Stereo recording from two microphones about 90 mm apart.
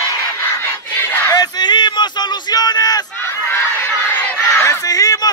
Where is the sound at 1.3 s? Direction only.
50° left (ahead or behind).